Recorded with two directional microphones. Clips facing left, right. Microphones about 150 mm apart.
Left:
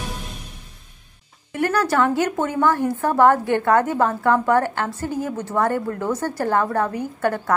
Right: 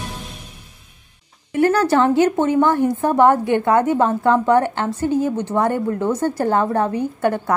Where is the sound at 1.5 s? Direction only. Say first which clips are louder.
Right 5 dB; 25° right (ahead or behind).